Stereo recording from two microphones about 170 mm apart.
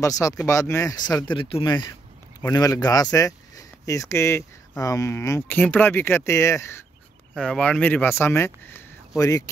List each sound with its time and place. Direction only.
0.0 s speech: 20° left (ahead or behind)
7.3 s speech: 5° left (ahead or behind)